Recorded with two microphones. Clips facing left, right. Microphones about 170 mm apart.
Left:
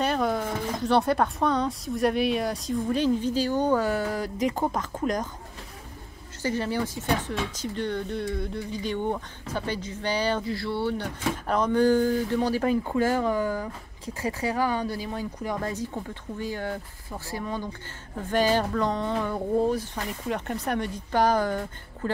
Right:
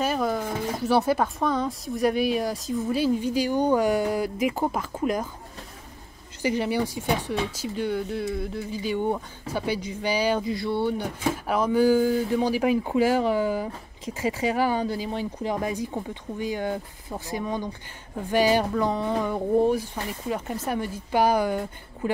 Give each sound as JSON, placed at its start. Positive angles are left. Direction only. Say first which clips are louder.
{"t": 0.0, "sound": "speech", "louder": "even", "side_deg": 0}
{"t": 6.4, "sound": "speech", "louder": "right 3 dB", "side_deg": -15}